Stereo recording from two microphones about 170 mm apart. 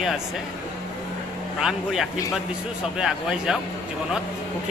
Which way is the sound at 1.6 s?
Centre (ahead or behind).